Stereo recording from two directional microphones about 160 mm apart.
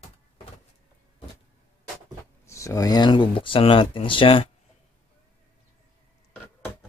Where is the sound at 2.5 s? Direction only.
20° left (ahead or behind); by 4.5 s 35° left (ahead or behind).